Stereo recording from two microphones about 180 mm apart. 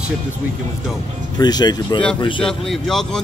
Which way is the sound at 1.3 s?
25° left (ahead or behind).